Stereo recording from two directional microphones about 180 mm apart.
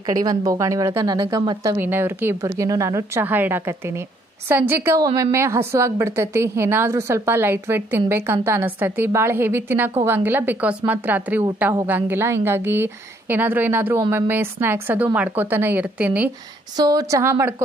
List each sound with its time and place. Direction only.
0.1 s speech: 20° right (ahead or behind)
16.7 s speech: 20° right (ahead or behind)